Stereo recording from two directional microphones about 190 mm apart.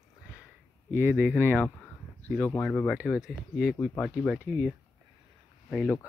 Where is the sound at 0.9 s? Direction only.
10° right (ahead or behind).